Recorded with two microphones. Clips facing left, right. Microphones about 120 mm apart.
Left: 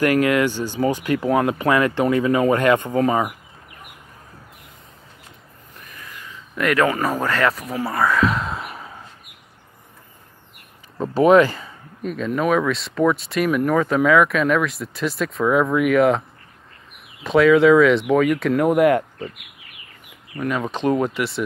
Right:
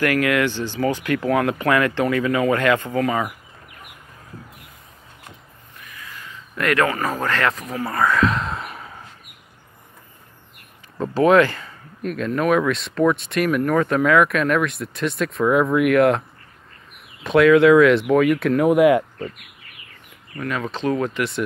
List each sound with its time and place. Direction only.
0.0 s speech: 35° left (ahead or behind)
0.7 s speech: 20° left (ahead or behind)
6.5 s speech: 5° left (ahead or behind)
11.0 s speech: 10° left (ahead or behind)
12.0 s speech: centre (ahead or behind)
20.3 s speech: 10° left (ahead or behind)